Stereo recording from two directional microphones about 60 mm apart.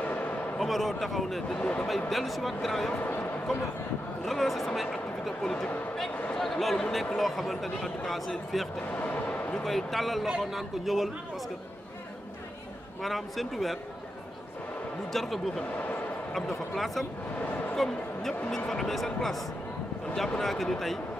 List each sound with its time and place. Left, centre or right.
0.0 s a sound: left
0.6 s speech: centre
1.6 s speech: left
1.9 s speech: centre
2.9 s speech: left
4.2 s speech: centre
8.9 s a sound: left
9.6 s speech: centre
13.0 s speech: centre
15.1 s speech: centre